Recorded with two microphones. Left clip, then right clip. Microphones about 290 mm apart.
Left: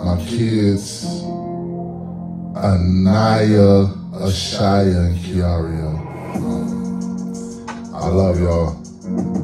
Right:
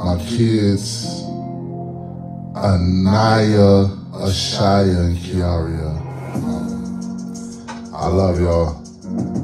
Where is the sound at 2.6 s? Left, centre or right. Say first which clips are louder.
Even; right.